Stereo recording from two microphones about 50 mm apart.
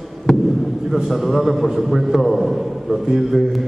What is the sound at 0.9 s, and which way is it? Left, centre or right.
A man's voice, centre.